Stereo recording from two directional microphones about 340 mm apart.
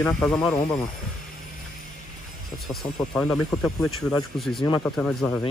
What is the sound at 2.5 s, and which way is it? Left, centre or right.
Speech, centre.